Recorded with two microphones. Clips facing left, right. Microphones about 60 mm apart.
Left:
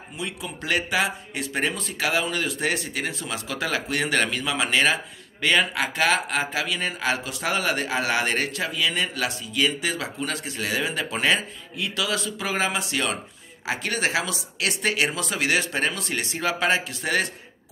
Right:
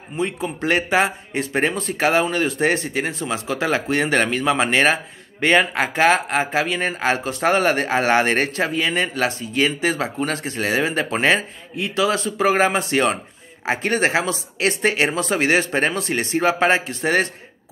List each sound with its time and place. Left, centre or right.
0.2 s speech: right